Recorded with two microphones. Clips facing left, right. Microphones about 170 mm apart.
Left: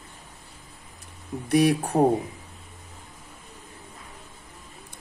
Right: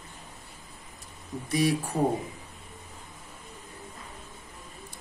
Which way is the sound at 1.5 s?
60° left (ahead or behind).